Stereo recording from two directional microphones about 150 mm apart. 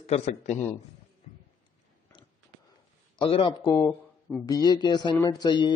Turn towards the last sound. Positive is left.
turn(degrees=30)  # may be behind; listen again after turning